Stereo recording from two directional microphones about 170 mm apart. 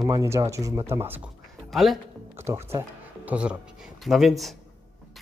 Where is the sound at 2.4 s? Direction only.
15° right (ahead or behind); by 4.5 s centre (ahead or behind).